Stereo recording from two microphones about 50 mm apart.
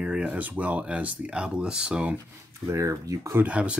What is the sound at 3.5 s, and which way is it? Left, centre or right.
Speech, right.